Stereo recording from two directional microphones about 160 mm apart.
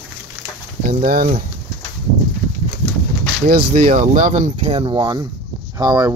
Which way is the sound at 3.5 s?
65° right (ahead or behind).